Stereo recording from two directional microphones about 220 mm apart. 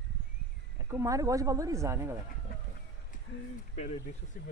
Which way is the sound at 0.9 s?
15° right (ahead or behind).